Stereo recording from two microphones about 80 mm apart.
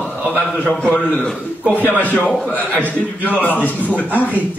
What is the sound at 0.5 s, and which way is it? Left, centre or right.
A man's voice, centre.